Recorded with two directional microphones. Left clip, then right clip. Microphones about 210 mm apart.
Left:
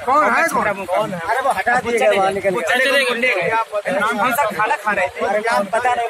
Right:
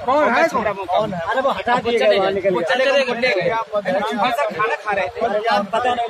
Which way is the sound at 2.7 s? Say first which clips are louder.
Left 2 dB; 30° left (ahead or behind).